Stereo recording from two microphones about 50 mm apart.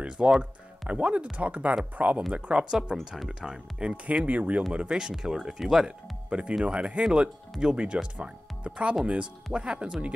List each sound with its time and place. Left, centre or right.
0.4 s speech: right; by 3.9 s centre
3.9 s speech: right
4.7 s speech: centre
6.6 s speech: right